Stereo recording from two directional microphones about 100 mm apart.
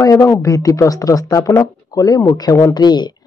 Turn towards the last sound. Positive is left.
turn(degrees=45)  # may be behind; listen again after turning